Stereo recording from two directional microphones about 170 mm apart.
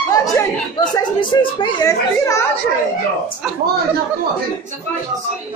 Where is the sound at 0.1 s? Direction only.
20° left (ahead or behind).